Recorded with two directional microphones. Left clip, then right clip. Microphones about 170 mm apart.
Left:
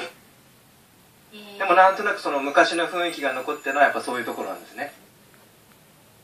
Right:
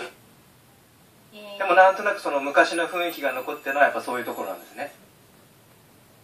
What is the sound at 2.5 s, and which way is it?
A man's voice, 20° right (ahead or behind).